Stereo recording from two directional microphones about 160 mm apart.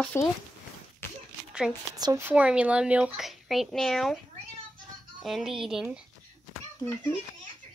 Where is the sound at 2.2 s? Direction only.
5° right (ahead or behind).